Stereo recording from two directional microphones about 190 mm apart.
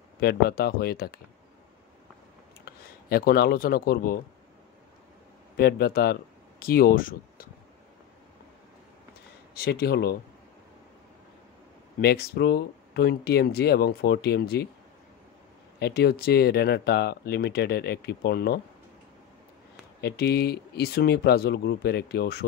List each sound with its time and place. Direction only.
0.2 s speech: 55° left (ahead or behind)
3.1 s speech: 50° left (ahead or behind)
5.6 s speech: 55° left (ahead or behind)
9.5 s speech: 55° left (ahead or behind)
12.0 s speech: 60° left (ahead or behind)
15.8 s speech: 60° left (ahead or behind)
20.0 s speech: 55° left (ahead or behind)